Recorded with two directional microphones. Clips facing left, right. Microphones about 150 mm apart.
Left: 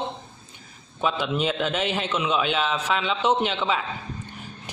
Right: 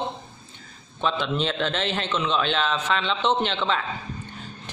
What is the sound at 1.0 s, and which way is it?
A man's voice, 10° left (ahead or behind).